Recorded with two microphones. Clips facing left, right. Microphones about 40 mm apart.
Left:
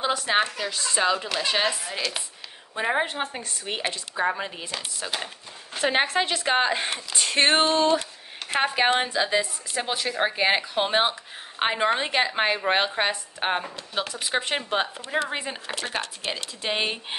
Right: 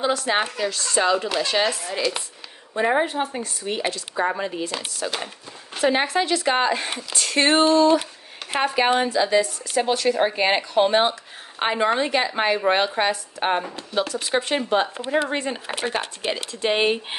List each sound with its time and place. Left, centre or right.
0.0 s speech: centre
1.1 s a woman's voice: centre
1.4 s speech: centre
4.1 s a woman's voice: centre
5.9 s speech: left
6.4 s speech: centre
9.8 s a woman's voice: centre
15.9 s speech: centre
16.6 s a woman's voice: centre